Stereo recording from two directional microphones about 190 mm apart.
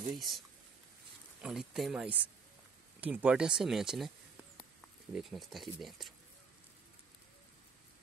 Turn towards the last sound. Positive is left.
turn(degrees=0)  # may be behind; listen again after turning